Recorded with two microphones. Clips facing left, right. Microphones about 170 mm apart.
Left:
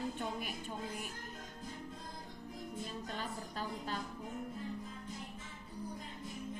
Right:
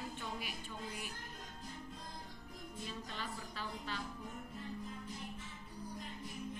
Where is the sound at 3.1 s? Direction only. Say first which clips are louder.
Left 3 dB; 45° left (ahead or behind).